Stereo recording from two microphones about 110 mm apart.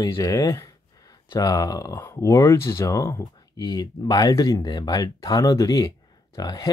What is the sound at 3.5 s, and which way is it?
Speech, 40° left (ahead or behind).